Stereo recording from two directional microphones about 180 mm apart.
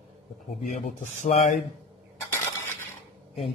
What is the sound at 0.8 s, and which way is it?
Speech, 40° left (ahead or behind).